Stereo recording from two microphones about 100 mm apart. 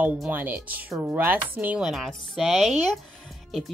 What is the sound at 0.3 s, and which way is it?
Speech, 15° right (ahead or behind).